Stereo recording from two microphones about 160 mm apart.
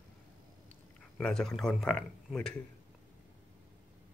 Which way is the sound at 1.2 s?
5° left (ahead or behind).